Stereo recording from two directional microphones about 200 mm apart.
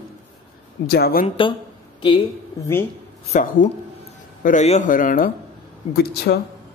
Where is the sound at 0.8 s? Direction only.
50° left (ahead or behind).